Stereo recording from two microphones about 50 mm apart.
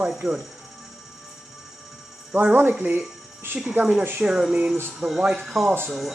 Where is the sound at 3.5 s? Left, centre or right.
Right.